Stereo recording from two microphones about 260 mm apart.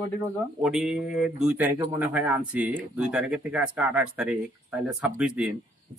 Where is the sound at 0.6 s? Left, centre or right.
Centre.